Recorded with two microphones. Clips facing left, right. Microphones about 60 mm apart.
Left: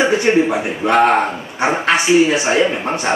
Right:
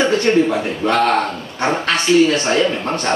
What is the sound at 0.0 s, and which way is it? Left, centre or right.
Speech, centre.